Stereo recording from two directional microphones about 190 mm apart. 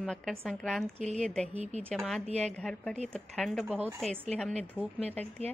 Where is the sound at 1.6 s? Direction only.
35° right (ahead or behind).